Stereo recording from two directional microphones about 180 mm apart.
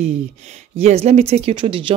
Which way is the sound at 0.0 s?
35° right (ahead or behind).